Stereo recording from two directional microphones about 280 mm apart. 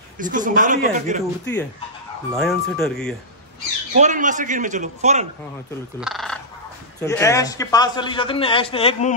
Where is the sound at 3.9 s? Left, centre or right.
Right.